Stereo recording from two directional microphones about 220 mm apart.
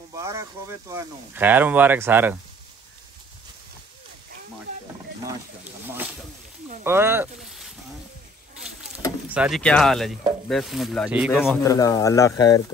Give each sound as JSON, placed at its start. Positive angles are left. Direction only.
{"t": 0.1, "sound": "speech", "side_deg": -15}
{"t": 5.2, "sound": "speech", "side_deg": -10}
{"t": 9.3, "sound": "speech", "side_deg": -5}
{"t": 11.6, "sound": "speech", "side_deg": 15}